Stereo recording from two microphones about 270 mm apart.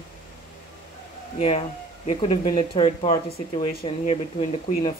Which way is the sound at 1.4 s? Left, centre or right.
Left.